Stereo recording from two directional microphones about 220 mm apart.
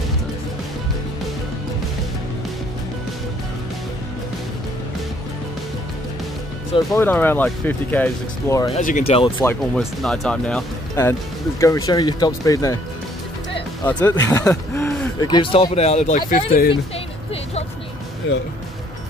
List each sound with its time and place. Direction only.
6.9 s speech: 10° left (ahead or behind)
8.6 s speech: 35° left (ahead or behind)
9.8 s speech: centre (ahead or behind)
13.8 s speech: 10° left (ahead or behind); by 16.5 s 30° left (ahead or behind)
18.3 s speech: 55° left (ahead or behind)